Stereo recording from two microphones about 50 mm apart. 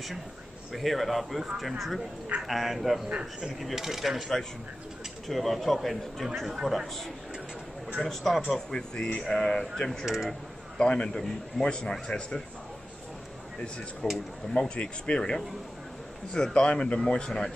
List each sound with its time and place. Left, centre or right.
0.7 s a man's voice: centre
5.3 s a man's voice: centre
8.0 s a man's voice: centre
9.8 s speech: centre
10.8 s a man's voice: centre
14.0 s speech: centre